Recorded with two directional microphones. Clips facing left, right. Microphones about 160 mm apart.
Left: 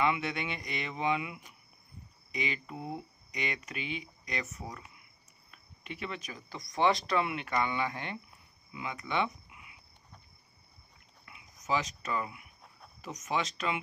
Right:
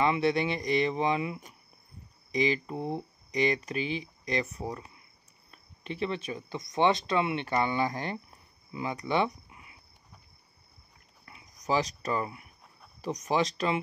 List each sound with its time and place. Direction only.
0.0 s speech: 35° right (ahead or behind)
11.2 s a sound: 35° right (ahead or behind)
13.0 s speech: 35° right (ahead or behind)